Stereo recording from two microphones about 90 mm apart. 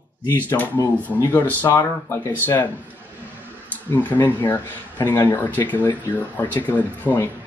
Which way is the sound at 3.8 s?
20° left (ahead or behind).